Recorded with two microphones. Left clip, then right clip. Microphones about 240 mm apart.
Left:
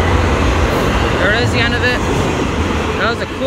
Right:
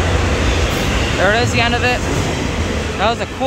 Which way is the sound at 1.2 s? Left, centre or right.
Centre.